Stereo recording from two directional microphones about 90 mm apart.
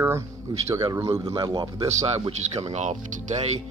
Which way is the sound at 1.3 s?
55° right (ahead or behind).